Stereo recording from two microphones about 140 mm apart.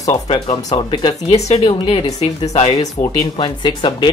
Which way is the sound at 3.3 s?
35° left (ahead or behind).